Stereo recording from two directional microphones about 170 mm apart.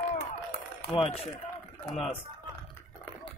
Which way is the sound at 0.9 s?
35° left (ahead or behind).